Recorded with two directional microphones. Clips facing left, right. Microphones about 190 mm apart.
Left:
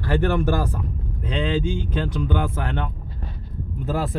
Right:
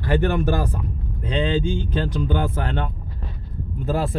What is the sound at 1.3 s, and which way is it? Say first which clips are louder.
Speech: right 2 dB; 30° right (ahead or behind).